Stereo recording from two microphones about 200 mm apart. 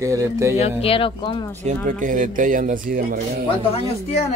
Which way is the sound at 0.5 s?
30° left (ahead or behind).